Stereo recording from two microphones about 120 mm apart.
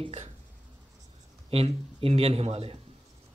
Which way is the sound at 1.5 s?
60° right (ahead or behind).